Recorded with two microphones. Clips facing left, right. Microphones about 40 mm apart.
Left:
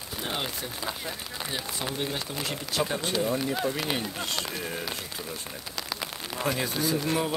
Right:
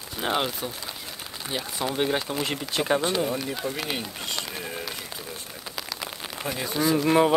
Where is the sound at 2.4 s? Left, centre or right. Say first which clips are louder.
Right 2 dB; right.